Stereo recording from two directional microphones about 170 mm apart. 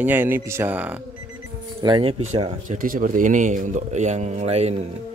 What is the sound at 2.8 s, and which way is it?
Speech, 55° right (ahead or behind).